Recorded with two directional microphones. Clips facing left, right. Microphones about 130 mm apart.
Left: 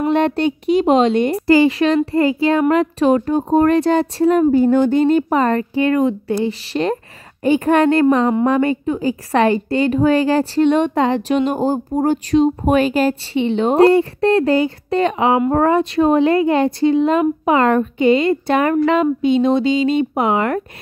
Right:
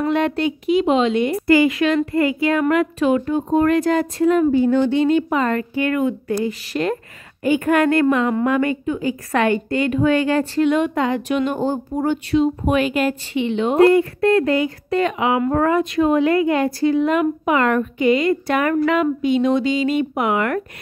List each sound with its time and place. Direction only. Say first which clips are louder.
0.0 s speech: left 3 dB; 30° left (ahead or behind)